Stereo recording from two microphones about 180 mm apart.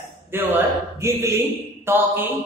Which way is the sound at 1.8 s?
10° right (ahead or behind).